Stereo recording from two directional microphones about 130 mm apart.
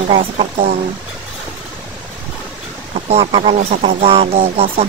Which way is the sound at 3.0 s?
55° right (ahead or behind).